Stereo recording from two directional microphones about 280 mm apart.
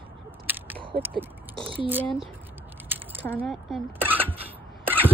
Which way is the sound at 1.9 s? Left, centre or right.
Centre.